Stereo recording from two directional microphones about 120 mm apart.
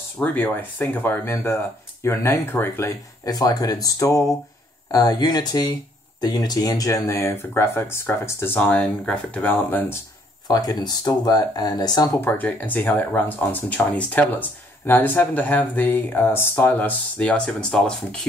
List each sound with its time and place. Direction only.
0.2 s speech: 15° left (ahead or behind)
3.3 s speech: 35° left (ahead or behind); by 9.9 s 15° left (ahead or behind)
10.5 s speech: 35° left (ahead or behind)
12.1 s speech: 15° left (ahead or behind)